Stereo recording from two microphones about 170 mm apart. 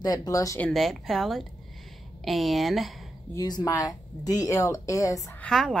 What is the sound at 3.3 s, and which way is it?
Speech, 20° left (ahead or behind).